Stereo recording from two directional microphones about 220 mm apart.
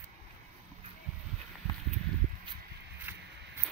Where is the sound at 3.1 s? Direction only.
10° right (ahead or behind).